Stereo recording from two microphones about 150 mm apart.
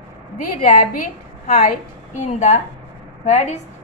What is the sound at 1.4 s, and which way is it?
A woman's voice, 50° left (ahead or behind).